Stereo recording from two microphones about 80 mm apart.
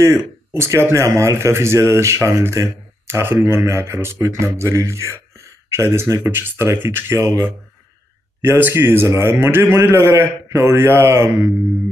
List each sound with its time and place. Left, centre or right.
0.0 s speech: right